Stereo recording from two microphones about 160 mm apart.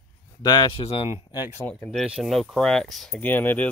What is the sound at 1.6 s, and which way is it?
Speech, 10° left (ahead or behind).